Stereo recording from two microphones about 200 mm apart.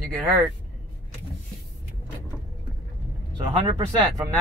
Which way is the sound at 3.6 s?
20° right (ahead or behind).